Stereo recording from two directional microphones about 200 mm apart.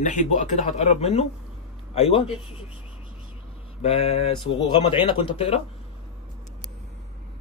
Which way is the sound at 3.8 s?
30° left (ahead or behind).